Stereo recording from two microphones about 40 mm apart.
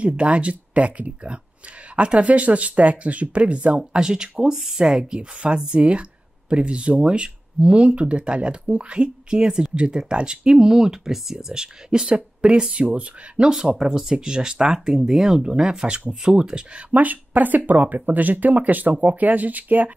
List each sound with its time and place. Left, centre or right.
0.0 s speech: right
3.9 s speech: centre
4.6 s speech: centre
4.8 s speech: right
12.9 s speech: right
13.7 s speech: right
15.0 s speech: centre; by 16.8 s right
16.9 s speech: right